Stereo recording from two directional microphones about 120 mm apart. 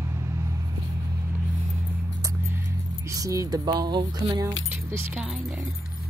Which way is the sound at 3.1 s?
25° right (ahead or behind).